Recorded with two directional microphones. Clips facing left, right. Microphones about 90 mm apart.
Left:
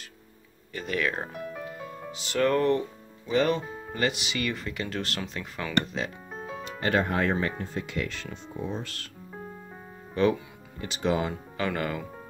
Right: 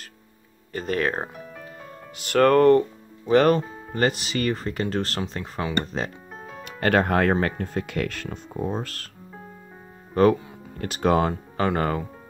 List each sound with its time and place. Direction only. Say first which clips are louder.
0.7 s speech: right 4 dB; 40° right (ahead or behind)
2.1 s speech: right 7 dB; 55° right (ahead or behind); by 6.1 s 40° right (ahead or behind)
6.8 s speech: right 5 dB; 60° right (ahead or behind); by 9.1 s 45° right (ahead or behind)
10.1 s speech: right 6 dB; 45° right (ahead or behind)